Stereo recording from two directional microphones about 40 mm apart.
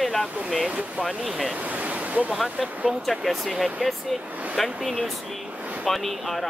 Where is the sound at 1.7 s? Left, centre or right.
Right.